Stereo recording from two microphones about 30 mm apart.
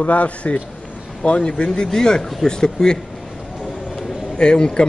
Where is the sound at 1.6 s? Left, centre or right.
Left.